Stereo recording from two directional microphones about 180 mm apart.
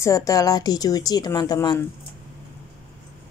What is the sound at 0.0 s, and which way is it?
Speech, 20° left (ahead or behind).